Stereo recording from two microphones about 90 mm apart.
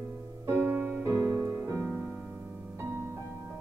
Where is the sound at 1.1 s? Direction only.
30° right (ahead or behind).